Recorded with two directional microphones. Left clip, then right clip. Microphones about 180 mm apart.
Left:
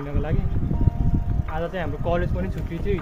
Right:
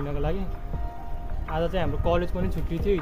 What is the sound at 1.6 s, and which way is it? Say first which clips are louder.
Speech: right 1 dB; 25° right (ahead or behind).